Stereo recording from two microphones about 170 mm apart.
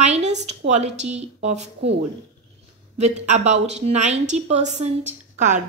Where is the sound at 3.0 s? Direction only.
40° right (ahead or behind).